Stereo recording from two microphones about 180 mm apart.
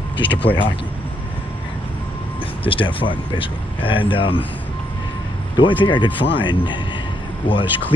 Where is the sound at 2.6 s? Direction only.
30° left (ahead or behind).